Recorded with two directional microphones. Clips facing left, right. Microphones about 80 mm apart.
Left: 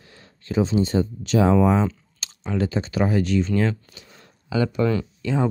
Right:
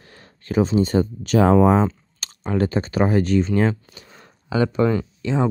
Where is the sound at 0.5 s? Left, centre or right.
Right.